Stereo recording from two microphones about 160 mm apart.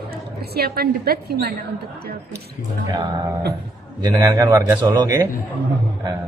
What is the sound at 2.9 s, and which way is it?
Speech, 25° right (ahead or behind).